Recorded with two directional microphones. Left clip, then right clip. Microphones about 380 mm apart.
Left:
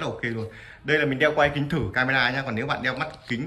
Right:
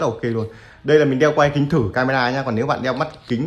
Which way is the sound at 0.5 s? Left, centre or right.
Centre.